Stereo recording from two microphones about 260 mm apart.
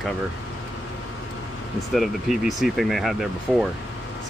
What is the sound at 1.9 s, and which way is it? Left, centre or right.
Speech, centre.